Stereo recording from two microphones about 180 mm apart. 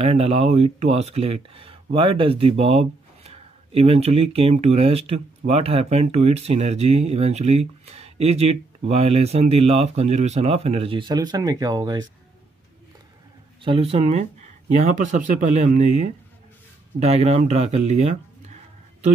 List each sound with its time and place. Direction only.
0.0 s speech: 35° right (ahead or behind)
13.6 s speech: 30° right (ahead or behind)